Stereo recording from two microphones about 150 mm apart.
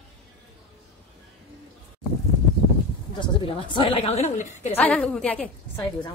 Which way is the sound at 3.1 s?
30° left (ahead or behind).